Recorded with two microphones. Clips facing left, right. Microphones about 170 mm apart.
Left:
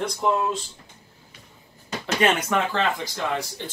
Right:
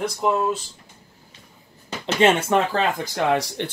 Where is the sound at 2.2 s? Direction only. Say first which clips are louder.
Right 5 dB; 25° right (ahead or behind).